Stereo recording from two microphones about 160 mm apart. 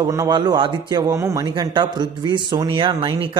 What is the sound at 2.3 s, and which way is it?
Speech, 30° right (ahead or behind).